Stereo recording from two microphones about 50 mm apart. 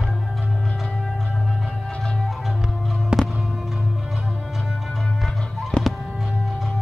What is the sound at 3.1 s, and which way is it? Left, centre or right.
Music, centre.